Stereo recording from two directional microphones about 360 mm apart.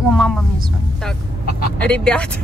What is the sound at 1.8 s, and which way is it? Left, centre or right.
Speech, centre.